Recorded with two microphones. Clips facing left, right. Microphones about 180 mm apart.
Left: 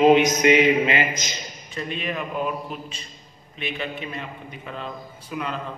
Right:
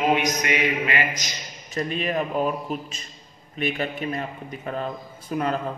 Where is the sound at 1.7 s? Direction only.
40° right (ahead or behind).